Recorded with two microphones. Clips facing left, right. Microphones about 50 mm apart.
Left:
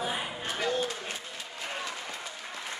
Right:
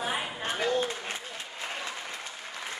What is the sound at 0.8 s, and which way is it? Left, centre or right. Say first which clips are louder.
Applause: right 2 dB; right.